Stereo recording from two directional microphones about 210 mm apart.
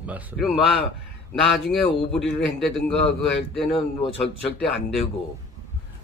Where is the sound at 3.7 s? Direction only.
25° left (ahead or behind).